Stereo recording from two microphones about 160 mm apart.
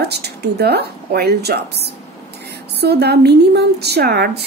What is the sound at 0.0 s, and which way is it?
Speech, 90° right.